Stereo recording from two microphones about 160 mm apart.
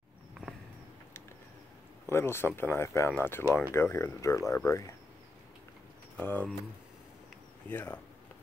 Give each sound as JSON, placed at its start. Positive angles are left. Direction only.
{"t": 2.0, "sound": "speech", "side_deg": 15}
{"t": 6.1, "sound": "speech", "side_deg": 10}
{"t": 7.6, "sound": "speech", "side_deg": 10}